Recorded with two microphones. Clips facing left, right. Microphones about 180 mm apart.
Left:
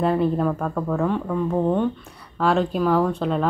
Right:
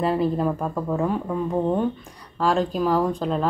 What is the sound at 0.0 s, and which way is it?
Speech, 5° right (ahead or behind).